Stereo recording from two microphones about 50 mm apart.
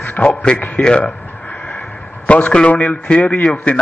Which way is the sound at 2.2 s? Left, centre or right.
Left.